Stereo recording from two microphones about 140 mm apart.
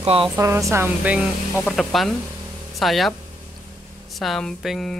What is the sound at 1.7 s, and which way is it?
Speech, centre (ahead or behind).